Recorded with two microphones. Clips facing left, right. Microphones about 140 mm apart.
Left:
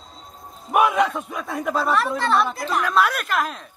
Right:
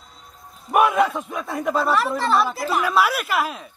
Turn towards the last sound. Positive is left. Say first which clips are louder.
# right 1 dB
turn(degrees=-5)  # may be behind; listen again after turning